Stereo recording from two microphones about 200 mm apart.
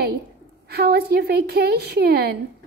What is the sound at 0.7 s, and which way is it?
A woman's voice, 50° right (ahead or behind).